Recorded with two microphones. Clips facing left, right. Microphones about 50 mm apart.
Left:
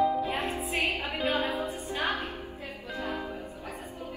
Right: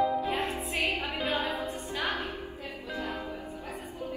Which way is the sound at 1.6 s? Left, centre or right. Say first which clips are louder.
Left 2 dB; left.